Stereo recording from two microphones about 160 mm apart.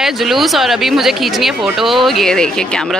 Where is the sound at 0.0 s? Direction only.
Centre (ahead or behind).